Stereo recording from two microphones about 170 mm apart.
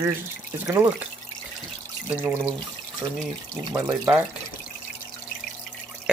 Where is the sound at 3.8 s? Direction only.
10° right (ahead or behind).